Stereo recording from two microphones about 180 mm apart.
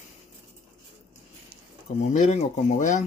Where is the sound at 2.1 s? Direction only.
40° left (ahead or behind).